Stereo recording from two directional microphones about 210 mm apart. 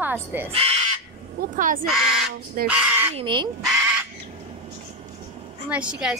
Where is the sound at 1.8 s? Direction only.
Centre (ahead or behind).